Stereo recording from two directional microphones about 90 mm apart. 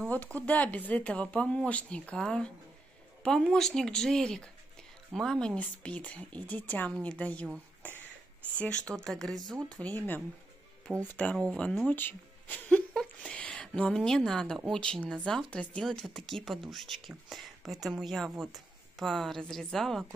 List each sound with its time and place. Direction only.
0.0 s a woman's voice: 15° left (ahead or behind)
8.9 s a woman's voice: 5° left (ahead or behind)
9.7 s speech: 15° left (ahead or behind)
11.9 s a sound: 20° left (ahead or behind); by 14.6 s 5° left (ahead or behind)
14.7 s a woman's voice: 10° left (ahead or behind)